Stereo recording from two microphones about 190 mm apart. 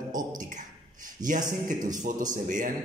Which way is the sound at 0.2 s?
20° right (ahead or behind).